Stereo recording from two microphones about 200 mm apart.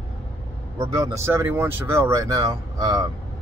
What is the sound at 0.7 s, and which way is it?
Speech, 15° right (ahead or behind).